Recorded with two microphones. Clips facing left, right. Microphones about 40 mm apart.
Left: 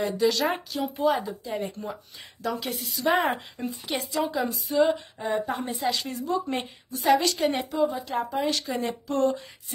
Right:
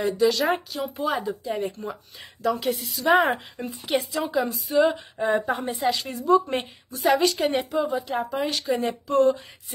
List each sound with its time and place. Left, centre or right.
0.0 s speech: centre
4.3 s speech: centre
7.7 s speech: right
8.2 s speech: centre
9.1 s speech: right